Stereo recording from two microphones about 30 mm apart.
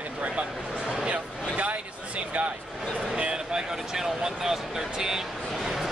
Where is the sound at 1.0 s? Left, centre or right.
Right.